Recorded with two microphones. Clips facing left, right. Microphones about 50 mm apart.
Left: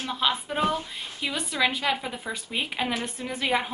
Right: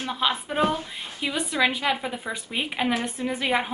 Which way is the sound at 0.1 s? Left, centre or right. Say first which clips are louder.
Right 1 dB; centre.